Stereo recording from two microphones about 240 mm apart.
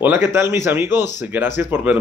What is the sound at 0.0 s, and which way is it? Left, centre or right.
Speech, centre.